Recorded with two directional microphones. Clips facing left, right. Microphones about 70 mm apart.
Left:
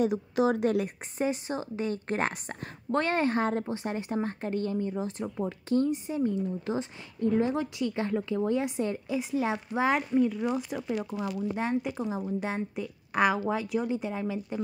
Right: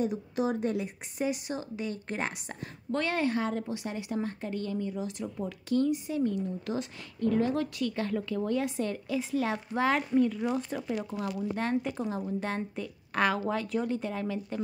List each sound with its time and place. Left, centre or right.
0.0 s speech: left
1.1 s a woman's voice: left; by 14.6 s centre